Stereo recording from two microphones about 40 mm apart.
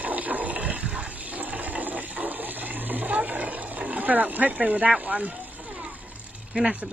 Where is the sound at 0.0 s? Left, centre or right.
Right.